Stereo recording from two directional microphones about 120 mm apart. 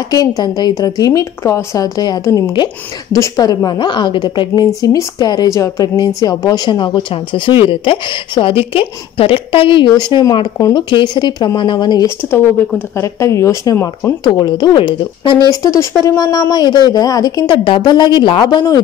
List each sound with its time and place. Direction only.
0.4 s a woman's voice: 35° left (ahead or behind)
2.5 s a woman's voice: 40° left (ahead or behind)
12.2 s speech: 20° left (ahead or behind)
14.2 s a woman's voice: 35° left (ahead or behind)
15.5 s a woman's voice: 25° left (ahead or behind)